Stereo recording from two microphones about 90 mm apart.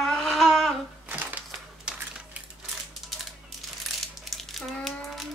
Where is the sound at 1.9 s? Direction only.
10° right (ahead or behind).